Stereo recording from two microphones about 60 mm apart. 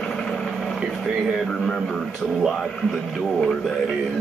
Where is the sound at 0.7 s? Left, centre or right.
Centre.